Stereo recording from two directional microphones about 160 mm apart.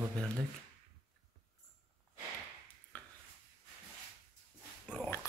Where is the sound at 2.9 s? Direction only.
10° left (ahead or behind).